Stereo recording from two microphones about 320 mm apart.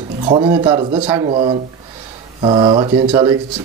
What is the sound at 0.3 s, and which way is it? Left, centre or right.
Speech, centre.